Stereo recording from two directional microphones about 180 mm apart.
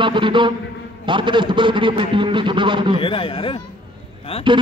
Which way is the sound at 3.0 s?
30° left (ahead or behind).